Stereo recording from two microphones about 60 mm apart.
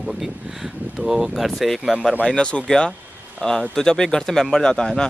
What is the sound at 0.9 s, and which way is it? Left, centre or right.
Speech, centre.